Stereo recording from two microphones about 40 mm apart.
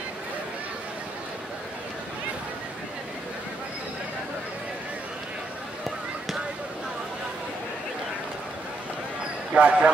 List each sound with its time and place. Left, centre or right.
9.5 s speech: right